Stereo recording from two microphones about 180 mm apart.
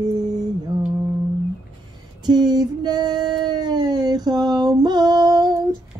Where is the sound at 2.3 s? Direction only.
25° right (ahead or behind).